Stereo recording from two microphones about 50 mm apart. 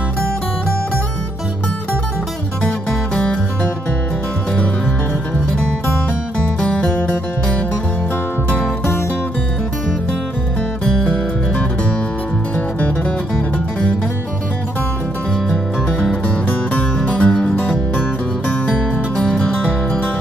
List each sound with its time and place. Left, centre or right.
17.3 s music: centre